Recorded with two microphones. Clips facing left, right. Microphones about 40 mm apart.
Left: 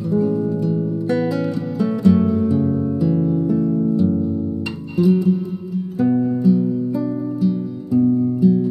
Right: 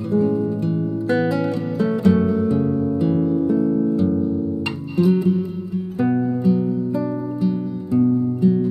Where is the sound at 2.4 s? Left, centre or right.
Centre.